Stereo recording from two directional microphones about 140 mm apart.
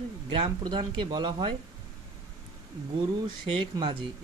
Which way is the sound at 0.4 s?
35° right (ahead or behind).